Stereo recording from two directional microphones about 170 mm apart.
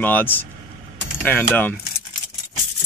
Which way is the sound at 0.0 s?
10° left (ahead or behind).